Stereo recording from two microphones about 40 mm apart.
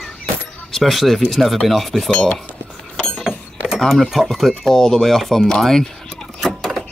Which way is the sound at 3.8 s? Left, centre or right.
Centre.